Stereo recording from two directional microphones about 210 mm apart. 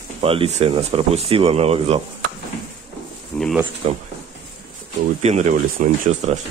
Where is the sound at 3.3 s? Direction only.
Centre (ahead or behind).